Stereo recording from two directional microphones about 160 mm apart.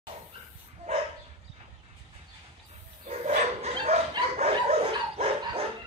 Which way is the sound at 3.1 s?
45° right (ahead or behind).